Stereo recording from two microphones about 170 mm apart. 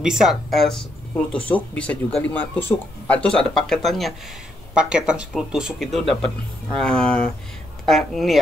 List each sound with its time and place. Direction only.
0.0 s speech: 5° right (ahead or behind)